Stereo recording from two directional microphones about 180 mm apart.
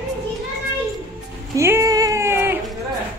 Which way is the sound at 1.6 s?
15° right (ahead or behind).